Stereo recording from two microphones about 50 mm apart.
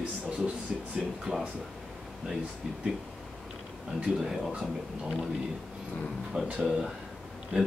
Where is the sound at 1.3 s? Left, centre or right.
Centre.